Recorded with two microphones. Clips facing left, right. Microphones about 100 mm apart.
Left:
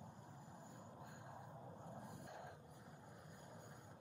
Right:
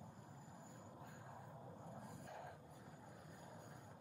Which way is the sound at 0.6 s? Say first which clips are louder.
Even; 20° left (ahead or behind).